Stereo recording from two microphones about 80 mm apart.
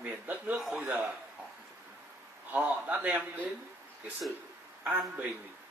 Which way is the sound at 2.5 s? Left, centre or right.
Centre.